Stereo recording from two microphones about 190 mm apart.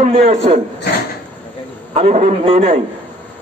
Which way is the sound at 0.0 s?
35° right (ahead or behind).